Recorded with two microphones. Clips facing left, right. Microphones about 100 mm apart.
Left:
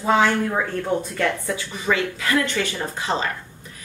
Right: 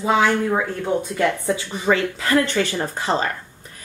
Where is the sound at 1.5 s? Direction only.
35° right (ahead or behind).